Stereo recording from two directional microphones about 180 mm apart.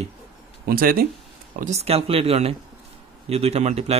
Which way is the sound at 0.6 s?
55° right (ahead or behind).